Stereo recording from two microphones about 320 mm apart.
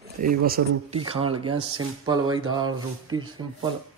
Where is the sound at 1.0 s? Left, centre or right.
Centre.